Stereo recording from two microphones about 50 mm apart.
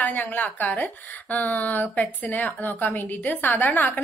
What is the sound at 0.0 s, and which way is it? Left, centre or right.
A woman's voice, left.